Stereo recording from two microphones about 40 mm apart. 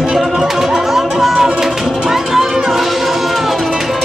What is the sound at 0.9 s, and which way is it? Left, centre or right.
Music, centre.